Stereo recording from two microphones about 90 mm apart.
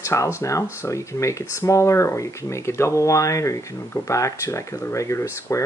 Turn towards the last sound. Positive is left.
turn(degrees=30)  # may be behind; listen again after turning